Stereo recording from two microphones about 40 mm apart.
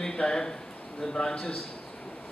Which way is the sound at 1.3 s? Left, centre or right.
Left.